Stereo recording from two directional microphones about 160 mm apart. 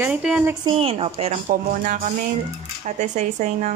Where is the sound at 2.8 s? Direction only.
50° right (ahead or behind).